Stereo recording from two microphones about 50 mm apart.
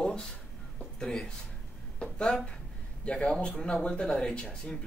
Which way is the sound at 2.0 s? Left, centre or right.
Left.